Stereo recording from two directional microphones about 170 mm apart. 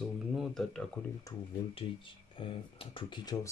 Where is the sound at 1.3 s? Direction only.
20° left (ahead or behind).